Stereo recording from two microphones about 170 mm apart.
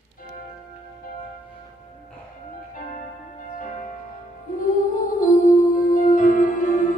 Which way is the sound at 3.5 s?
50° left (ahead or behind).